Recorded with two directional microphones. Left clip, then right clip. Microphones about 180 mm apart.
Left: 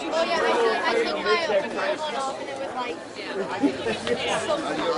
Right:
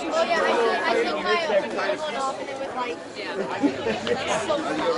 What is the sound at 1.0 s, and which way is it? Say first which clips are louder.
Speech: even; 35° left (ahead or behind).